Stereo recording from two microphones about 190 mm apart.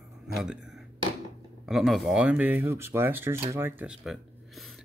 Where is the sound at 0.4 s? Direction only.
5° right (ahead or behind).